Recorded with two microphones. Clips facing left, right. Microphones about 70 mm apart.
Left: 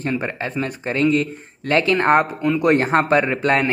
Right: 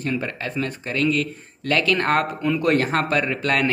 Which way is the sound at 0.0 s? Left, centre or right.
Left.